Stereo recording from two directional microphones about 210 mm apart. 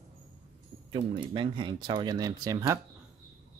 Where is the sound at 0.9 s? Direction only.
25° right (ahead or behind).